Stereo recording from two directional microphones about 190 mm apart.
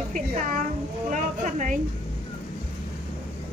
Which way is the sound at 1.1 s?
40° right (ahead or behind).